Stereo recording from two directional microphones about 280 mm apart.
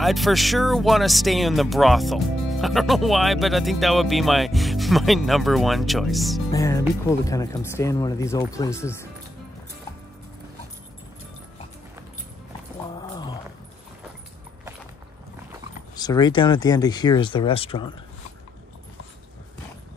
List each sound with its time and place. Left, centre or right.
0.0 s speech: centre
6.5 s speech: centre
13.1 s dog: centre
16.0 s speech: centre